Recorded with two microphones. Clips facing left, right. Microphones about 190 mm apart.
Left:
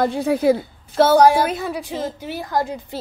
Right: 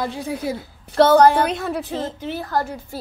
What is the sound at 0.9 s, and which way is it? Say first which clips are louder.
A woman's voice: even; 5° left (ahead or behind).